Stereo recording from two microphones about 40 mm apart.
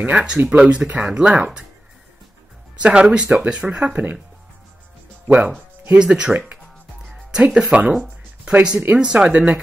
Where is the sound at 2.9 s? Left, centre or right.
Right.